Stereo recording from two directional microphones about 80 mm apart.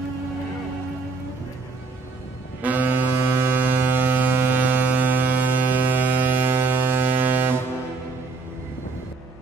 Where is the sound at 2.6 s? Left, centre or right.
Right.